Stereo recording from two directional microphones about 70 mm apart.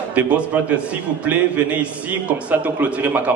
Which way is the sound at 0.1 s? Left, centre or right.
Right.